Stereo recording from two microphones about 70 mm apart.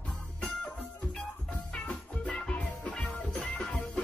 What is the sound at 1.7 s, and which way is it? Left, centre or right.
Music, centre.